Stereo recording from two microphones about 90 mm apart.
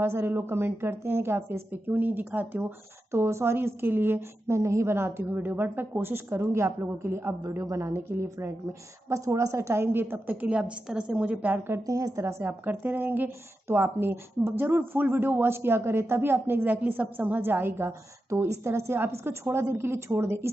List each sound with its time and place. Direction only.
0.0 s speech: 25° right (ahead or behind)
3.1 s speech: 30° right (ahead or behind)
11.8 s speech: 40° right (ahead or behind)